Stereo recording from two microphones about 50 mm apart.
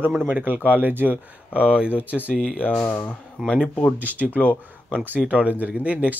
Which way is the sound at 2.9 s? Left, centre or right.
Left.